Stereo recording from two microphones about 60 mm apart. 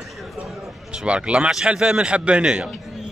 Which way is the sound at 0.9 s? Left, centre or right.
Centre.